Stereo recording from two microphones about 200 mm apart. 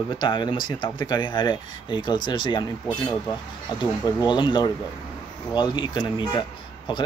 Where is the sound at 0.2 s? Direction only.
20° left (ahead or behind).